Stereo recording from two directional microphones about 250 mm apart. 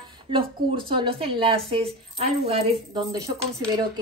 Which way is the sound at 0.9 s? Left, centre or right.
Centre.